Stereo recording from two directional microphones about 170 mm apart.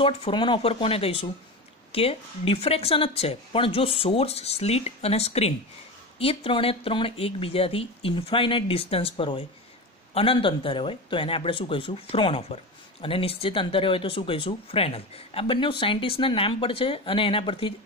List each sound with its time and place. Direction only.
0.0 s speech: 30° left (ahead or behind)